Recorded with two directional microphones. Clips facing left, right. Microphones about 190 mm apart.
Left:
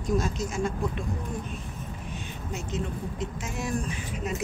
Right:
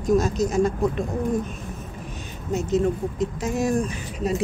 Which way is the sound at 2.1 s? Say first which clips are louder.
Right 10 dB; 40° right (ahead or behind).